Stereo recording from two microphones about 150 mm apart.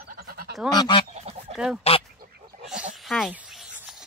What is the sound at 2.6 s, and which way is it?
Pig, 5° right (ahead or behind).